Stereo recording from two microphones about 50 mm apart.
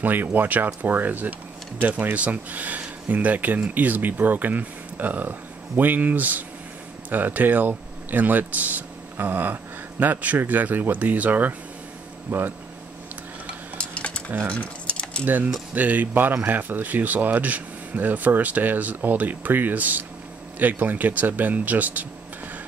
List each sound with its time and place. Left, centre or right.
0.0 s speech: right
13.7 s cutlery: left
14.5 s typing: left
15.2 s speech: right